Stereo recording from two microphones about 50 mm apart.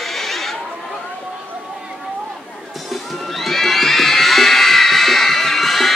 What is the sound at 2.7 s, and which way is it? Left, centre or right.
Music, centre.